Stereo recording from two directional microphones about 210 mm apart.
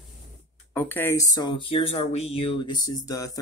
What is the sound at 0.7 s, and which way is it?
Speech, 10° left (ahead or behind).